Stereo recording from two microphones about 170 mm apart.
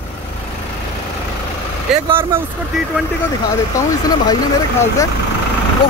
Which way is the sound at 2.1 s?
15° right (ahead or behind).